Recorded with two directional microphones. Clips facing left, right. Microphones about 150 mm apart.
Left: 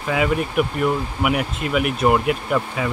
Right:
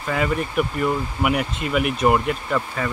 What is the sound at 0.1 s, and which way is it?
Speech, 5° left (ahead or behind).